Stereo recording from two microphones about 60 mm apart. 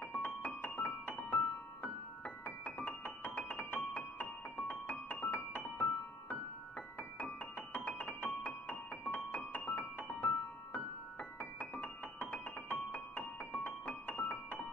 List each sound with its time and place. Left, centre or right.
0.1 s keyboard: left
7.0 s keyboard: left